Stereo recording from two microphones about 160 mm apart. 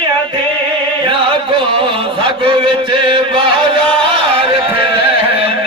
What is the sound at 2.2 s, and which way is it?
Chant, 35° right (ahead or behind).